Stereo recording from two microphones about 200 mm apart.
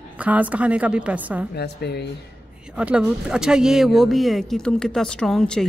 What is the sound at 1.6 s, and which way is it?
Speech, 55° left (ahead or behind).